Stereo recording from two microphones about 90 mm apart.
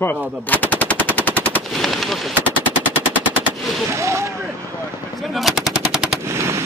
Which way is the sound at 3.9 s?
35° right (ahead or behind).